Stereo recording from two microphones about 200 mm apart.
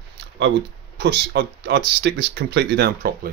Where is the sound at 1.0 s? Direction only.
55° right (ahead or behind).